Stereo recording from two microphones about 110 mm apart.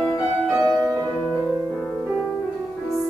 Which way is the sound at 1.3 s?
10° right (ahead or behind).